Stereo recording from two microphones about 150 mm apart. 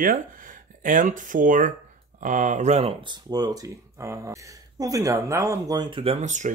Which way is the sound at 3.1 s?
25° right (ahead or behind).